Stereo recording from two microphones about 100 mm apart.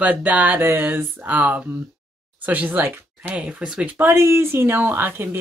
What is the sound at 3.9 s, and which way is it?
Speech, 25° right (ahead or behind).